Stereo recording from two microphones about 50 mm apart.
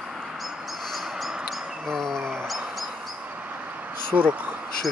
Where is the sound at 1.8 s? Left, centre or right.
Centre.